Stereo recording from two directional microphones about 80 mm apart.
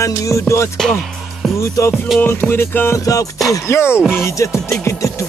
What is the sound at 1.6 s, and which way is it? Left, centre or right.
Music, left.